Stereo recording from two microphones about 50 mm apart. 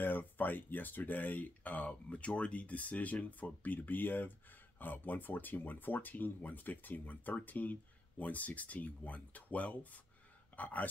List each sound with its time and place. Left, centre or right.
0.0 s speech: left